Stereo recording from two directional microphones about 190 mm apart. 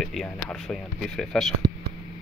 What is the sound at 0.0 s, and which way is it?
Speech, centre (ahead or behind).